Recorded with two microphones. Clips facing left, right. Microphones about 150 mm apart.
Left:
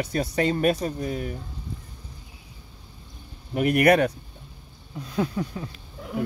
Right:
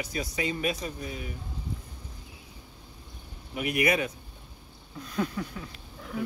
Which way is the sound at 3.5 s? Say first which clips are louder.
Left 8 dB; 50° left (ahead or behind).